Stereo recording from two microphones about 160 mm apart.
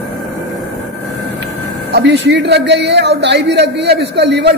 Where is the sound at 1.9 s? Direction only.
90° right.